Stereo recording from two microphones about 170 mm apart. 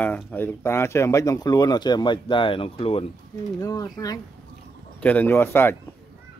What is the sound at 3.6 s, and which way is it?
Speech, 20° left (ahead or behind).